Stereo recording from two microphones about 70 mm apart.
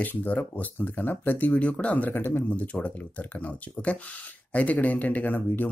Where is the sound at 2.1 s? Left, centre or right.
Left.